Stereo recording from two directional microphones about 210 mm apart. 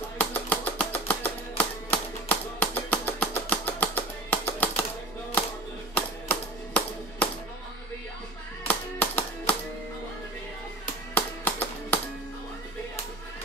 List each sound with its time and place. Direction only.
0.2 s music: 10° left (ahead or behind)
5.9 s a sound: 5° left (ahead or behind)
8.6 s music: 10° left (ahead or behind)
11.1 s music: 10° left (ahead or behind)